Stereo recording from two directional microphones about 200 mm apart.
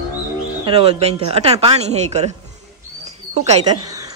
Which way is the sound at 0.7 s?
30° right (ahead or behind).